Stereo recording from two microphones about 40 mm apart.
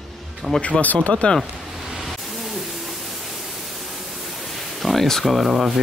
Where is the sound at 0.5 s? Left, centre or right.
Left.